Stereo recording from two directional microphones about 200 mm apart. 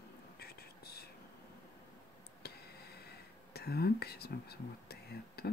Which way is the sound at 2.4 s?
50° left (ahead or behind).